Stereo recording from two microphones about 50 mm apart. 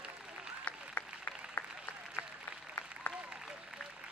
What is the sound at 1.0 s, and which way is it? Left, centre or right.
Applause, left.